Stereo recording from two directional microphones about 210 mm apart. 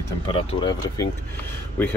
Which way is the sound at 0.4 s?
25° left (ahead or behind).